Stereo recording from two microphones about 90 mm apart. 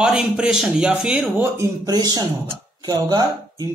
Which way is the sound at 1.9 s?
45° right (ahead or behind).